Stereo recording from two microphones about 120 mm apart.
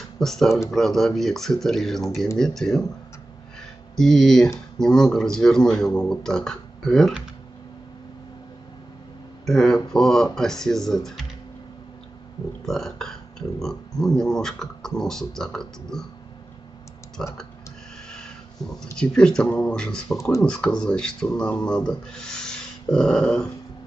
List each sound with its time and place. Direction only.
0.2 s speech: 5° left (ahead or behind)
3.9 s speech: centre (ahead or behind)
9.5 s speech: 5° left (ahead or behind)
12.6 s speech: 5° left (ahead or behind)
17.2 s speech: 5° left (ahead or behind)
18.1 s a sound: 5° left (ahead or behind)
18.9 s speech: 5° left (ahead or behind)
20.2 s speech: 25° left (ahead or behind)
20.4 s speech: 5° left (ahead or behind)